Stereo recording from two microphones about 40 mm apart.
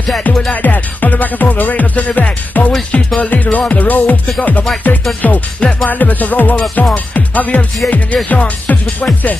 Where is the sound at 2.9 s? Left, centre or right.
Left.